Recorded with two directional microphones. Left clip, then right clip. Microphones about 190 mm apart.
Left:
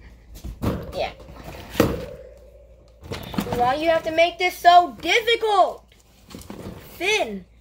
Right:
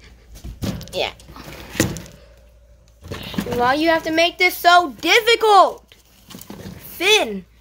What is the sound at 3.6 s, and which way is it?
A woman's voice, 50° right (ahead or behind).